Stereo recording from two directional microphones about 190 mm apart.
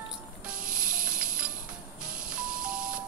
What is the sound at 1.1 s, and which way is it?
Music, 45° right (ahead or behind).